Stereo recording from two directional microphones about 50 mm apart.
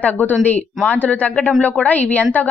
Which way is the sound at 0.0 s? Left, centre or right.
Left.